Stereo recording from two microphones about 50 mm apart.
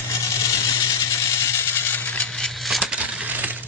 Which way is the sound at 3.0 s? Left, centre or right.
Right.